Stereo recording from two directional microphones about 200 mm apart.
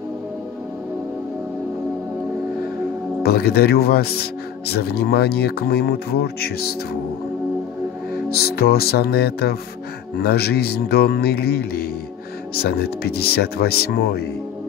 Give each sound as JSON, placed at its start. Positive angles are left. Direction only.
{"t": 3.2, "sound": "speech", "side_deg": 50}
{"t": 8.3, "sound": "speech", "side_deg": 50}